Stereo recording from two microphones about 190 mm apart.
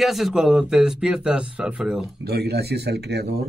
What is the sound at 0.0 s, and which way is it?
Speech, centre (ahead or behind).